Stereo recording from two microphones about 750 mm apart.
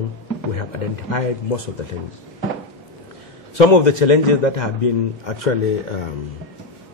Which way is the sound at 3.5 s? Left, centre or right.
Left.